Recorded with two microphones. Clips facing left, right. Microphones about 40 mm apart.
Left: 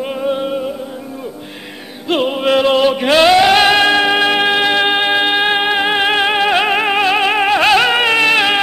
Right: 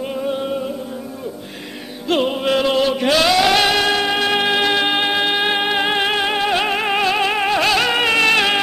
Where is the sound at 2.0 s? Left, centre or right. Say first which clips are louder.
Left 3 dB; centre.